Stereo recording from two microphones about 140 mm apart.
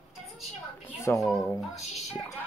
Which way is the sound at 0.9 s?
20° left (ahead or behind).